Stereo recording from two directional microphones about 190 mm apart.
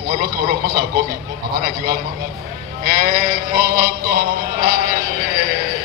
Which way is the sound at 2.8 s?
50° right (ahead or behind).